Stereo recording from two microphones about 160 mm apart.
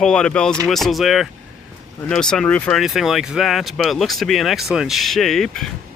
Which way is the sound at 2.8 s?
Centre (ahead or behind).